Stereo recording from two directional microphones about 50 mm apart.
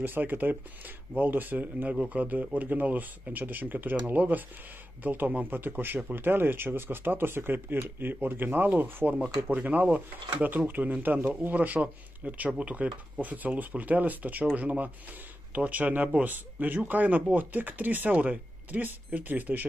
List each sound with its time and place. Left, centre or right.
0.0 s speech: right
1.9 s speech: right